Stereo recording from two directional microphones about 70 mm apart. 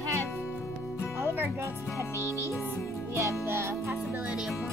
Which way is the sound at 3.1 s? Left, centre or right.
Right.